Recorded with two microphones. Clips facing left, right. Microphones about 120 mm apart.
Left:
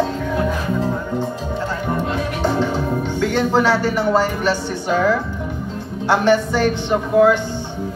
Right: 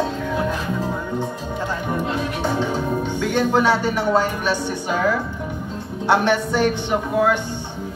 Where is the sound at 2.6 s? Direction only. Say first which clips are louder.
Left 2 dB; 15° right (ahead or behind).